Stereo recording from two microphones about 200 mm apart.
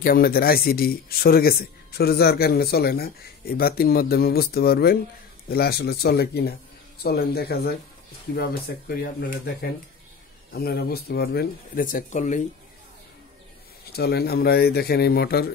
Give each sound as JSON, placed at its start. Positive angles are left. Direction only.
{"t": 0.0, "sound": "speech", "side_deg": 50}
{"t": 13.9, "sound": "speech", "side_deg": 50}